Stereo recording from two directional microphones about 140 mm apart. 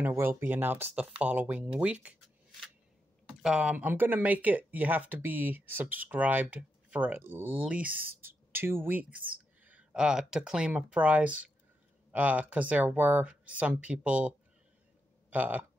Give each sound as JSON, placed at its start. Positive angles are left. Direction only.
{"t": 0.0, "sound": "speech", "side_deg": -15}
{"t": 3.4, "sound": "speech", "side_deg": -5}